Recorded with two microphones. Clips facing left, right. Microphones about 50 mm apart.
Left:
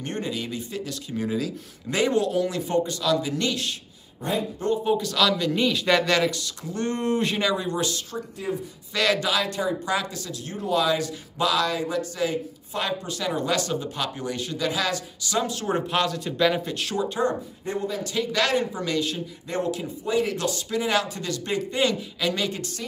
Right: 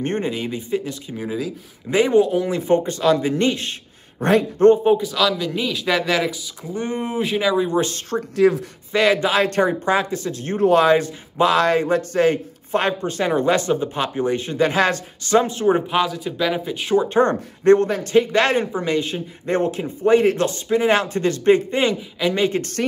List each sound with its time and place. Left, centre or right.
0.0 s speech: right
4.2 s speech: right
5.0 s speech: centre
7.7 s speech: right
8.4 s speech: right
8.9 s speech: right
9.5 s speech: right
9.8 s speech: right
15.9 s speech: centre
16.8 s speech: right
17.2 s speech: right
17.9 s speech: right
19.4 s speech: right
22.6 s speech: right